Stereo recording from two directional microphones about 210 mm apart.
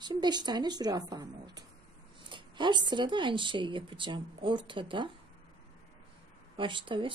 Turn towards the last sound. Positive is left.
turn(degrees=-25)  # may be behind; listen again after turning